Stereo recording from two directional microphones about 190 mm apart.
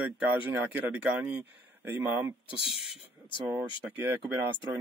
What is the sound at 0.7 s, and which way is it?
Speech, 5° right (ahead or behind).